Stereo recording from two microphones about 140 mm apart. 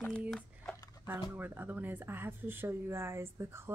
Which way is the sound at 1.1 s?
15° right (ahead or behind).